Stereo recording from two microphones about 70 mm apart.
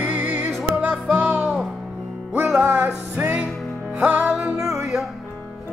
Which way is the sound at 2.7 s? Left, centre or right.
Right.